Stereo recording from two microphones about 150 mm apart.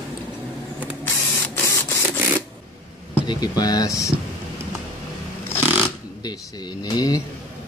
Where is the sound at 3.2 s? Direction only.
30° left (ahead or behind).